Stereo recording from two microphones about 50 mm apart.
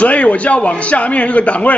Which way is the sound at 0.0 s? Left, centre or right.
Left.